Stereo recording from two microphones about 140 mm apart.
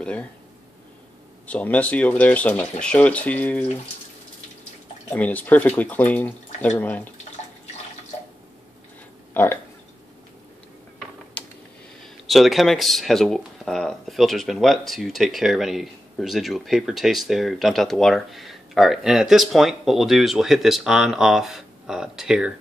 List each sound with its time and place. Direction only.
0.0 s speech: 5° left (ahead or behind)
1.5 s speech: 10° left (ahead or behind)
5.1 s speech: 10° left (ahead or behind)
9.3 s speech: 15° left (ahead or behind)
12.0 s speech: centre (ahead or behind)